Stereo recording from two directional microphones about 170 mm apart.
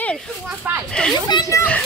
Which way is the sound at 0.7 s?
10° right (ahead or behind).